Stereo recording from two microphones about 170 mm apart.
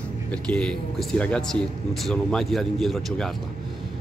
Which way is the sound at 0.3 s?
5° left (ahead or behind).